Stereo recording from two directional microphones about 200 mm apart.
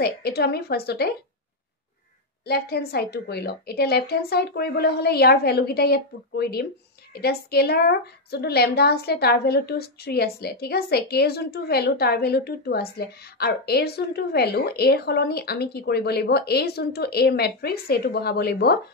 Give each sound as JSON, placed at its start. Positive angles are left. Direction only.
{"t": 0.0, "sound": "a woman's voice", "side_deg": 50}
{"t": 2.4, "sound": "a woman's voice", "side_deg": 50}